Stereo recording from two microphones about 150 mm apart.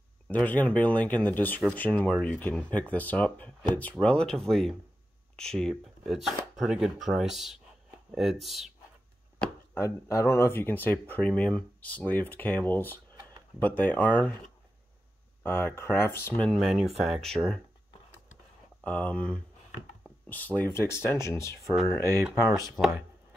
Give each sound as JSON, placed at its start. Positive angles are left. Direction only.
{"t": 0.3, "sound": "speech", "side_deg": 10}
{"t": 9.8, "sound": "speech", "side_deg": 20}
{"t": 15.4, "sound": "speech", "side_deg": 15}
{"t": 18.9, "sound": "speech", "side_deg": 10}